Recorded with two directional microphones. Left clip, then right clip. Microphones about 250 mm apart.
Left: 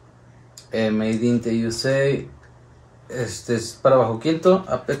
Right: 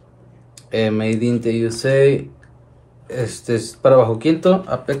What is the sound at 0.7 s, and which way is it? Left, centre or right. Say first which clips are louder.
Speech: right 3 dB; right.